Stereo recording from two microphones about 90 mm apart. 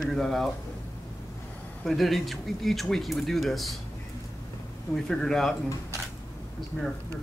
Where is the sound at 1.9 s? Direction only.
Centre (ahead or behind).